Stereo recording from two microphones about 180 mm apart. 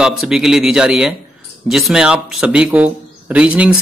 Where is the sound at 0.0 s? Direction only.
5° right (ahead or behind).